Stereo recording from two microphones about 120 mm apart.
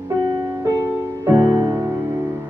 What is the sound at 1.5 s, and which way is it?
Music, 35° right (ahead or behind).